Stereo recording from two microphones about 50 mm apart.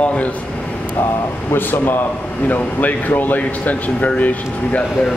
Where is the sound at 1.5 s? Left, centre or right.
Left.